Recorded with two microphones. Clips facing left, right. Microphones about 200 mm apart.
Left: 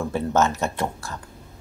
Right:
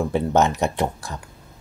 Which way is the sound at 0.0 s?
15° right (ahead or behind).